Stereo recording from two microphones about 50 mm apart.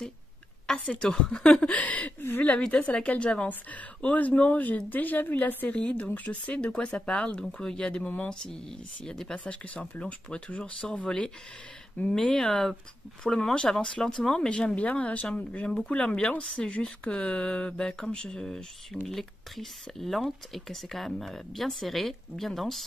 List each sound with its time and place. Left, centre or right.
0.9 s a woman's voice: centre
9.4 s speech: left
12.1 s speech: centre
14.8 s speech: left
19.0 s speech: centre